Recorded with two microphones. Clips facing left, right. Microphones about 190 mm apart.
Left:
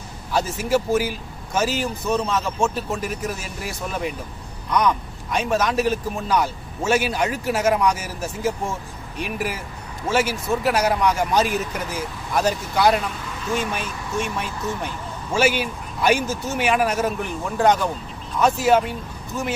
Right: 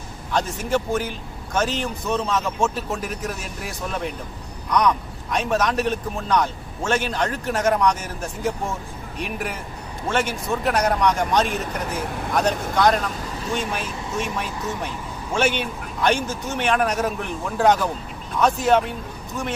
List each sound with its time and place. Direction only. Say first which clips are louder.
0.3 s speech: left 2 dB; 5° left (ahead or behind)
11.9 s speech: right 2 dB; 60° right (ahead or behind)
12.7 s speech: left 1 dB; 5° left (ahead or behind)